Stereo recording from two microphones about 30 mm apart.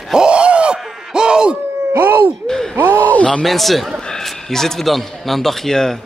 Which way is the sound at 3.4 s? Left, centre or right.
Centre.